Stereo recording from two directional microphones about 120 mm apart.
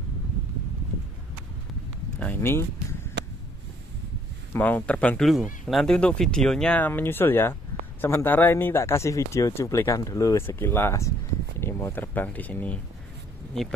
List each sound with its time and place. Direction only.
2.1 s speech: 15° left (ahead or behind)
4.6 s speech: 15° left (ahead or behind)
5.3 s speech: centre (ahead or behind)